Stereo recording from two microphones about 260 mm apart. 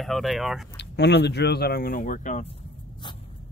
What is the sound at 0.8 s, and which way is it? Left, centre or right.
Speech, left.